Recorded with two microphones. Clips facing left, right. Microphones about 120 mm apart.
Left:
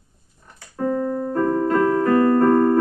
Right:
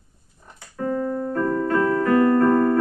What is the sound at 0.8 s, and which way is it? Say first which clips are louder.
Keyboard: left 3 dB; 25° left (ahead or behind).